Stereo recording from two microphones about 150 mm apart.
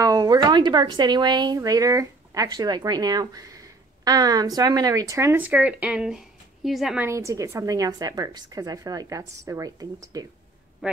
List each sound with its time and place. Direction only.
0.0 s speech: 25° right (ahead or behind); by 7.1 s centre (ahead or behind)
7.1 s a woman's voice: 20° right (ahead or behind)
10.8 s a man's voice: 5° right (ahead or behind)